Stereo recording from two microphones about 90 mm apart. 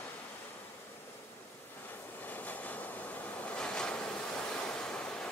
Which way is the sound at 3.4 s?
10° left (ahead or behind).